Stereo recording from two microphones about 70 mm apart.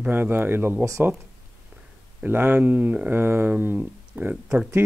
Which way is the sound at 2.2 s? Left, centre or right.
Right.